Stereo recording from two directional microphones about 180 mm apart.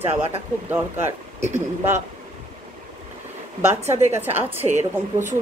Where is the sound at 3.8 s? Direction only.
35° right (ahead or behind).